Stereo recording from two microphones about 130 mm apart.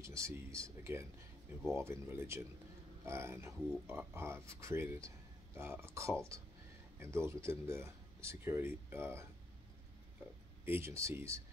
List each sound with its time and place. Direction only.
0.0 s speech: 25° right (ahead or behind)
10.6 s speech: 20° right (ahead or behind)